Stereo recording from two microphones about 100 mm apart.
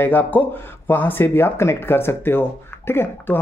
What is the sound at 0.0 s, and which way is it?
Speech, 20° left (ahead or behind).